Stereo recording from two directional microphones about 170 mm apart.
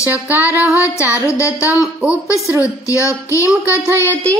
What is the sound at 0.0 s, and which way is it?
Female singing, 10° right (ahead or behind).